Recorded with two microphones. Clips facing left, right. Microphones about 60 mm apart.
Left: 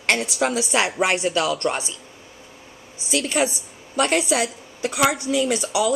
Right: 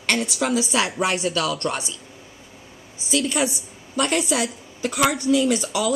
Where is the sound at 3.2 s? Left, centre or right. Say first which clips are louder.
Left 1 dB; left.